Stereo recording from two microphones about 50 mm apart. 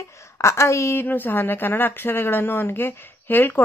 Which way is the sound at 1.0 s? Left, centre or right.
Left.